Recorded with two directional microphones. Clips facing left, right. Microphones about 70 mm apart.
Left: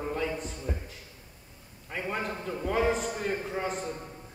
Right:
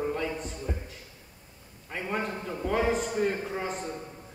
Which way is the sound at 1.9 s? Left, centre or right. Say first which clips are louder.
Right 1 dB; centre.